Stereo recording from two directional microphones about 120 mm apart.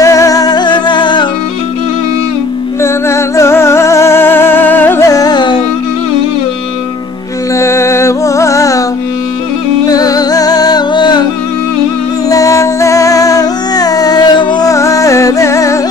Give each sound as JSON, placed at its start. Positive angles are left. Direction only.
{"t": 0.0, "sound": "music", "side_deg": 25}
{"t": 2.8, "sound": "music", "side_deg": 25}
{"t": 7.5, "sound": "music", "side_deg": 25}
{"t": 9.8, "sound": "music", "side_deg": 30}
{"t": 12.3, "sound": "music", "side_deg": 30}
{"t": 14.7, "sound": "music", "side_deg": 25}